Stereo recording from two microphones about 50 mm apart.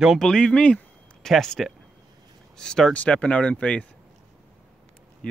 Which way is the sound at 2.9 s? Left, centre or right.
Left.